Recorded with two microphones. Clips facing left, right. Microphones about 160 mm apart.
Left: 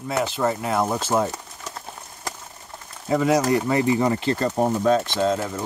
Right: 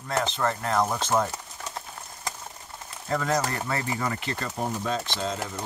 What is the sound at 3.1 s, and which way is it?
Speech, 10° left (ahead or behind).